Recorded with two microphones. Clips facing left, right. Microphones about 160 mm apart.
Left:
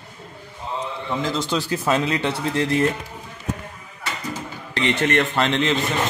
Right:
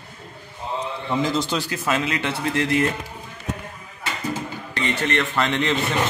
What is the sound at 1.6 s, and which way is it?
Speech, 35° left (ahead or behind).